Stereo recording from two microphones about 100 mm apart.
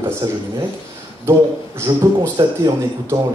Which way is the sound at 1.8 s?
30° right (ahead or behind).